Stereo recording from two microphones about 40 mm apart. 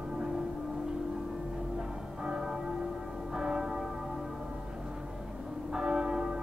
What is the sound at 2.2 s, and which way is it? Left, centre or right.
Church bell, centre.